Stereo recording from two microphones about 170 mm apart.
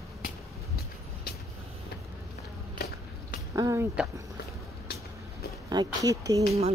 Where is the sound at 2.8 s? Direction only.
65° left (ahead or behind).